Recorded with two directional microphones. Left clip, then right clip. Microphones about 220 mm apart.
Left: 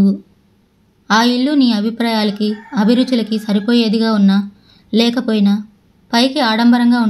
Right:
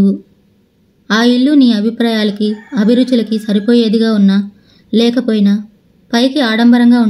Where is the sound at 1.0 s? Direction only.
30° left (ahead or behind).